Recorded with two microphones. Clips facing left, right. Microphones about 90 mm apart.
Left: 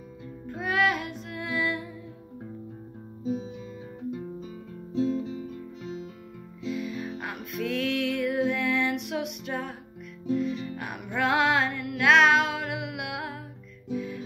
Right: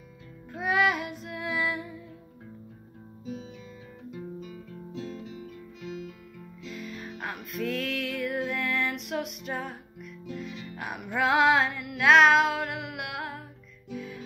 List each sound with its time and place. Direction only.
0.5 s music: centre (ahead or behind)
4.1 s guitar: 30° left (ahead or behind)
5.8 s music: 30° left (ahead or behind)
6.6 s music: 5° left (ahead or behind)